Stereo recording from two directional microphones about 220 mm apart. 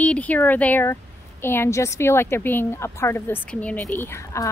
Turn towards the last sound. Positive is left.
turn(degrees=10)  # may be behind; listen again after turning